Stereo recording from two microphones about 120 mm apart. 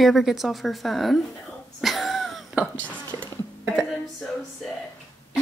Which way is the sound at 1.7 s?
Centre (ahead or behind).